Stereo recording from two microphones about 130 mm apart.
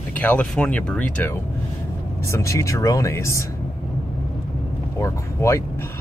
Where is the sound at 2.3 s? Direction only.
25° left (ahead or behind).